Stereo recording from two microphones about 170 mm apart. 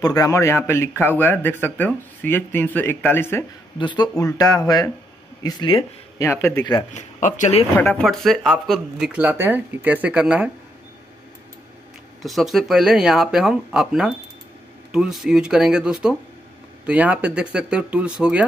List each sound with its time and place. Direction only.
0.0 s a man's voice: 20° left (ahead or behind)
3.7 s speech: 25° left (ahead or behind)
6.9 s speech: 45° left (ahead or behind)
7.7 s speech: 10° left (ahead or behind)
12.2 s speech: centre (ahead or behind)